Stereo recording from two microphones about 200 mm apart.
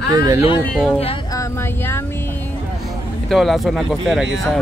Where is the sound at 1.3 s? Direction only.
10° left (ahead or behind).